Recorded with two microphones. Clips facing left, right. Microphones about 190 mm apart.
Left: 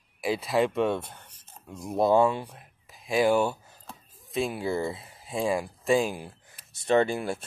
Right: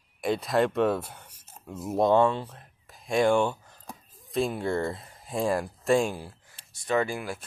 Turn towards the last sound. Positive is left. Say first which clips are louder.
# left 4 dB
turn(degrees=25)  # may be behind; listen again after turning